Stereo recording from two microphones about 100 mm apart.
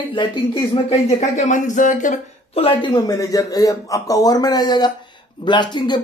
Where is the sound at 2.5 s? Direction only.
70° left (ahead or behind).